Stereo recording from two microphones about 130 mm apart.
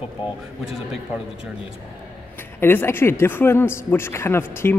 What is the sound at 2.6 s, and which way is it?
A man's voice, 15° left (ahead or behind).